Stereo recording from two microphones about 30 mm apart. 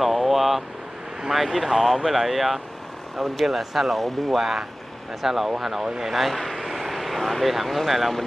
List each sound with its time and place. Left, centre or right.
0.0 s speech: centre
4.4 s speech: centre
6.1 s vehicle: centre
7.5 s speech: centre